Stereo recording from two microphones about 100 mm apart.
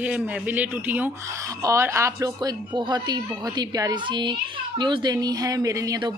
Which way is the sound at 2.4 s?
45° right (ahead or behind).